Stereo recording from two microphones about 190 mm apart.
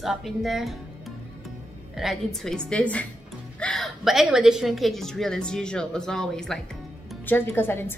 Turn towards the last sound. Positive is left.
turn(degrees=10)  # may be behind; listen again after turning